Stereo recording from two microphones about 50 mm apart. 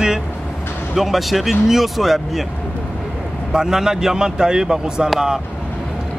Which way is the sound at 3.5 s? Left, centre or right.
Centre.